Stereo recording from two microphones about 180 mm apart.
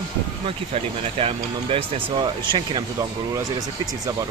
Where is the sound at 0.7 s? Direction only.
35° right (ahead or behind).